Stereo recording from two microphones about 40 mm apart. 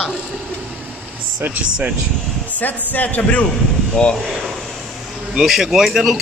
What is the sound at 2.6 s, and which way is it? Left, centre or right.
Speech, left.